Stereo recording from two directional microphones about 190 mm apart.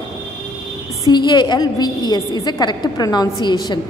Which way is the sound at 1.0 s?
20° left (ahead or behind).